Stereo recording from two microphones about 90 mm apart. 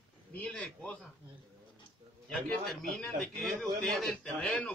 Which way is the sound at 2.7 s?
Centre (ahead or behind).